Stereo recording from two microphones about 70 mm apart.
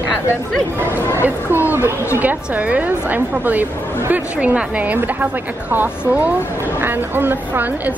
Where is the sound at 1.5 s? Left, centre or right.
Right.